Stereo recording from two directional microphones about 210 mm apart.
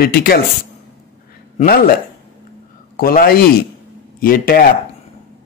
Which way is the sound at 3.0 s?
45° left (ahead or behind).